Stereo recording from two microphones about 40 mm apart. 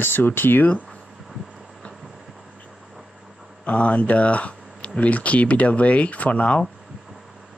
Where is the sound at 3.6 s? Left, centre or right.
Left.